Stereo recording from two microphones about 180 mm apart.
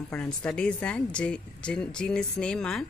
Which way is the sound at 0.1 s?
5° left (ahead or behind).